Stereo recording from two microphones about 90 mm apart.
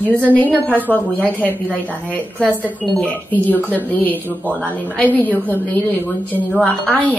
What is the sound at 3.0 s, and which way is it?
A woman's voice, 20° left (ahead or behind).